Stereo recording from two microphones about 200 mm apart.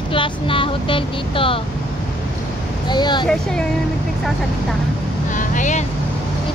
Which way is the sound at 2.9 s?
20° left (ahead or behind).